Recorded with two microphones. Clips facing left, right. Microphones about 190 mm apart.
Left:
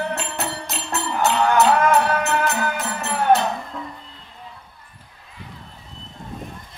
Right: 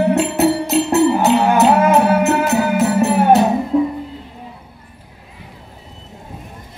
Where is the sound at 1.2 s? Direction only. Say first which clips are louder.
Right 6 dB; 25° right (ahead or behind).